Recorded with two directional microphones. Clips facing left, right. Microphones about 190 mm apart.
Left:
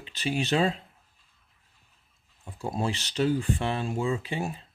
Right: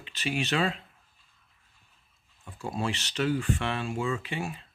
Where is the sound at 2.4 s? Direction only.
35° left (ahead or behind).